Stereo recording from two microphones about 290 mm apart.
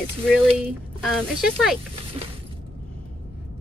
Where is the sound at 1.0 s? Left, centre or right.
Centre.